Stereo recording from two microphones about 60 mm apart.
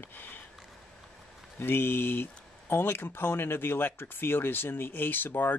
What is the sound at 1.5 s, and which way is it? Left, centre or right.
Speech, left.